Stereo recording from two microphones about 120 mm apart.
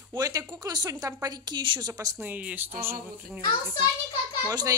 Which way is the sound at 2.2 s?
10° right (ahead or behind).